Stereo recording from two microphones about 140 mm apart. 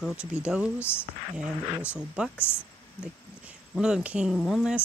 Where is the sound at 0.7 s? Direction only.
15° left (ahead or behind).